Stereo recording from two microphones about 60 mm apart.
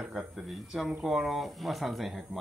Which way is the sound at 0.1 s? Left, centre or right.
Centre.